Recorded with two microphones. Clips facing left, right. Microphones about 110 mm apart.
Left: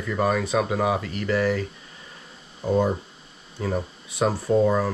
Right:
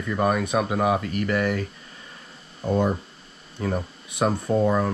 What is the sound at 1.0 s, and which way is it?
Speech, 30° left (ahead or behind).